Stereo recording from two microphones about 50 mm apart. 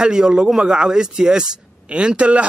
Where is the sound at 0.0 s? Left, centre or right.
Centre.